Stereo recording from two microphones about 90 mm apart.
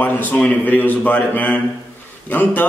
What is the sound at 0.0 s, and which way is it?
A man's voice, 20° left (ahead or behind).